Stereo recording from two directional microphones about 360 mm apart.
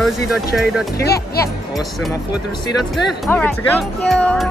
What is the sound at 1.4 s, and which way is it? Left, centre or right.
Speech, centre.